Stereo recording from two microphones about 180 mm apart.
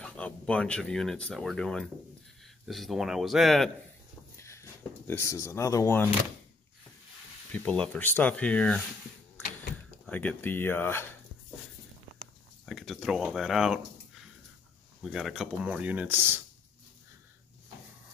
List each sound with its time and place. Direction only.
0.0 s speech: 5° left (ahead or behind)
4.4 s speech: 15° left (ahead or behind)
7.5 s speech: 5° left (ahead or behind)
10.0 s speech: 10° left (ahead or behind)
12.6 s speech: centre (ahead or behind)
15.0 s speech: centre (ahead or behind)